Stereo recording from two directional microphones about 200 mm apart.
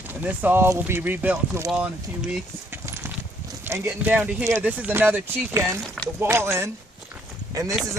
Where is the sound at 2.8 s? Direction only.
10° right (ahead or behind).